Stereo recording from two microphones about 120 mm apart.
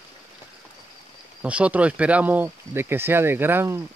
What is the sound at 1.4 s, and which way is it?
Speech, 10° right (ahead or behind).